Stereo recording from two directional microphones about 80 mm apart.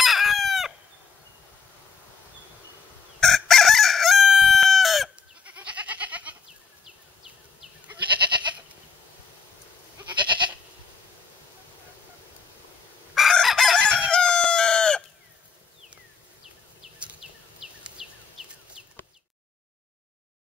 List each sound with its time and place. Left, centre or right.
0.0 s chicken: centre
3.2 s chicken: centre
5.4 s goat: centre
10.1 s goat: right
13.1 s chicken: centre
17.0 s a sound: centre